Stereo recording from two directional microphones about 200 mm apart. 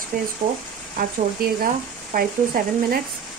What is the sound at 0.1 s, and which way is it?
A woman's voice, 45° right (ahead or behind).